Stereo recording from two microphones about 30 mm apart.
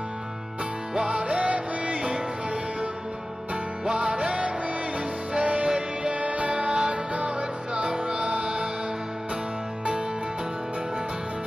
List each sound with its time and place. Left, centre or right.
0.9 s music: right
3.8 s music: right